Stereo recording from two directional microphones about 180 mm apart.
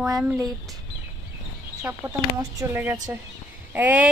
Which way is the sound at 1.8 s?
15° right (ahead or behind).